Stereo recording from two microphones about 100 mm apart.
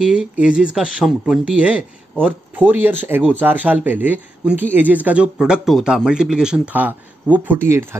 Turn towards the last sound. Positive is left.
turn(degrees=-25)  # may be behind; listen again after turning